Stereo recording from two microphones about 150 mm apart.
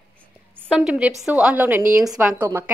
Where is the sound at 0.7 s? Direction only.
5° right (ahead or behind).